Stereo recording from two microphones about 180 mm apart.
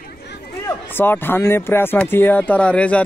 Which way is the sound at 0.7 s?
10° left (ahead or behind).